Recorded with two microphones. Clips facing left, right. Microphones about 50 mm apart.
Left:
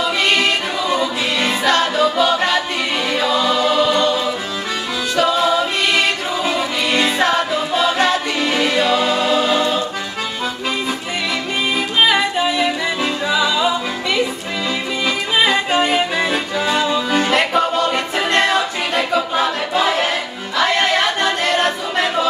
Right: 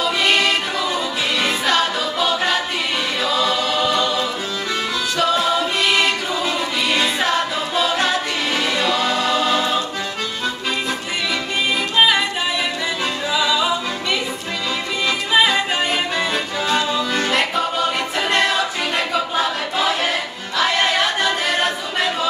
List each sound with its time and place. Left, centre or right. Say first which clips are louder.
0.9 s music: left 3 dB; centre
3.2 s choir: left 3 dB; centre
5.1 s a capella: left 3 dB; centre
7.7 s music: left 3 dB; centre
12.1 s music: left 3 dB; centre
15.0 s music: even; centre
19.1 s choir: left 3 dB; centre